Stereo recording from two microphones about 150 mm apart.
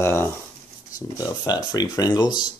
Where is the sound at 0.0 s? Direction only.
15° left (ahead or behind).